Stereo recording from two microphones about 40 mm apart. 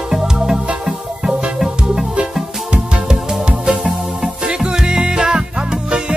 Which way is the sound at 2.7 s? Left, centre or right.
Right.